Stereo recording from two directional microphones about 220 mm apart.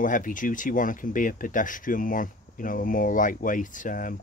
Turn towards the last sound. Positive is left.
turn(degrees=35)  # may be behind; listen again after turning